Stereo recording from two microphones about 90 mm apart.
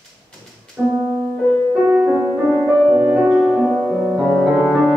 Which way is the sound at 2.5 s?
5° left (ahead or behind).